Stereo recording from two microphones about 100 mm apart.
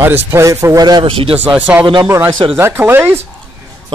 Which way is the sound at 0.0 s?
25° right (ahead or behind).